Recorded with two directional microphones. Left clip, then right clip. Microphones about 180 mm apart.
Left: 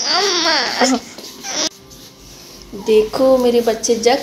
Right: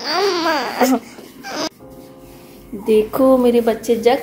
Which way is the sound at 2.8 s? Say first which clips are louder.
Left 1 dB; 15° right (ahead or behind).